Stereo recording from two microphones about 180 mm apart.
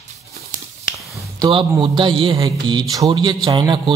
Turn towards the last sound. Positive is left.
turn(degrees=-25)  # may be behind; listen again after turning